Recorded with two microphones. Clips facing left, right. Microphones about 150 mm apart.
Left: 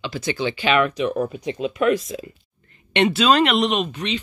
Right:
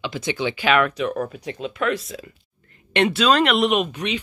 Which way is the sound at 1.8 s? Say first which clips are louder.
Left 5 dB; 35° left (ahead or behind).